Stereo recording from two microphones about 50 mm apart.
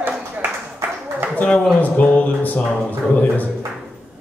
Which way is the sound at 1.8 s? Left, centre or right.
Left.